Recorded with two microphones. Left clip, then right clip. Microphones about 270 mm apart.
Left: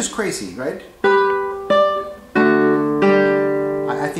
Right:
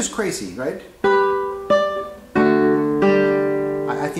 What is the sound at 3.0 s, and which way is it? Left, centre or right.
Music, centre.